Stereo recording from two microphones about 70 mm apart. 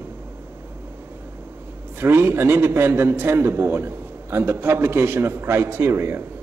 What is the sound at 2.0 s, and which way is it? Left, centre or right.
A man's voice, right.